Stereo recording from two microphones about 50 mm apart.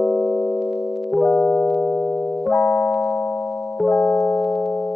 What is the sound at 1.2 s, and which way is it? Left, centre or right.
Music, left.